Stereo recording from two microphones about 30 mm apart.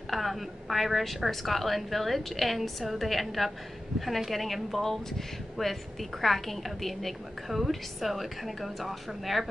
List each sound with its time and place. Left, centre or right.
0.1 s a woman's voice: centre
7.4 s a woman's voice: centre